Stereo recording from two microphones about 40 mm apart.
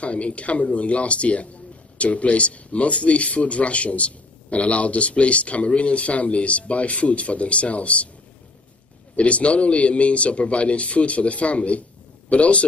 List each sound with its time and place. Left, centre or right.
0.0 s speech: left
9.1 s speech: left